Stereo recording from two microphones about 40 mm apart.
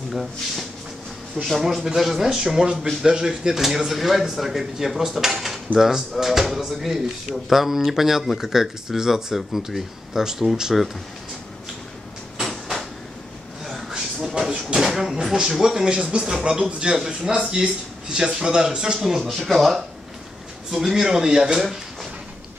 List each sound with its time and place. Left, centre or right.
0.1 s speech: centre
12.4 s cupboard open or close: centre
13.7 s a sound: centre
15.5 s a man's voice: centre
19.2 s speech: centre
20.7 s speech: centre